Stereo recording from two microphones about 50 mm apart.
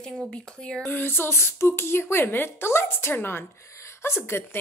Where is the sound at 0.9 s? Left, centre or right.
Left.